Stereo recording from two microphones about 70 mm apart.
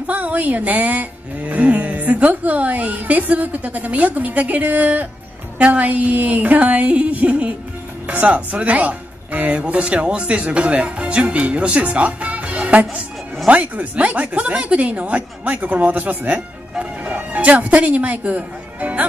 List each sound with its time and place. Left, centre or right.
0.0 s speech: right
16.7 s music: centre